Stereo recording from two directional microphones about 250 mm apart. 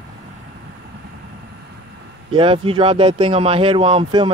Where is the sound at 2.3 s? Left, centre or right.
Right.